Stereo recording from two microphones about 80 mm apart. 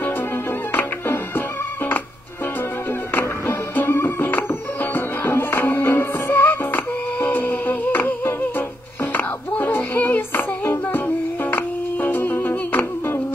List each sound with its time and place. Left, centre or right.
0.7 s music: left
3.4 s music: left
11.5 s humming: left